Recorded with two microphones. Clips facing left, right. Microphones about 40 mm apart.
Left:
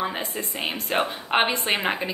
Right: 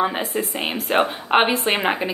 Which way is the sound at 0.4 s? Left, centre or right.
Centre.